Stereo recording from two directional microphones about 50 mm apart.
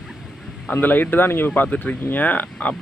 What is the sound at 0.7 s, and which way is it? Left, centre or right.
Speech, left.